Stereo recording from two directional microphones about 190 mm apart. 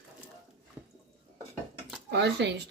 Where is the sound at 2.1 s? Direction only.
60° right (ahead or behind).